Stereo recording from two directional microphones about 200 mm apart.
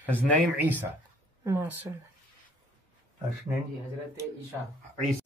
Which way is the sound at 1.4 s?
10° right (ahead or behind).